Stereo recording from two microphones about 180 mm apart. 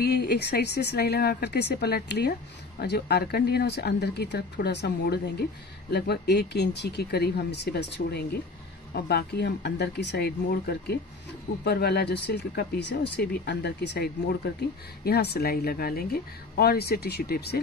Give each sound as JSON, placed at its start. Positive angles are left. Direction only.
{"t": 0.0, "sound": "speech", "side_deg": 65}